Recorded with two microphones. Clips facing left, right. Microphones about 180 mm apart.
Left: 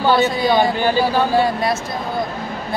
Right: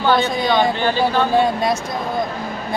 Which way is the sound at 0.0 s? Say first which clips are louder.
Left 1 dB; 10° left (ahead or behind).